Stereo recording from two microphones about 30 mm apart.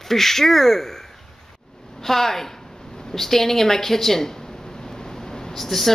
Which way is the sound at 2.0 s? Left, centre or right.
Centre.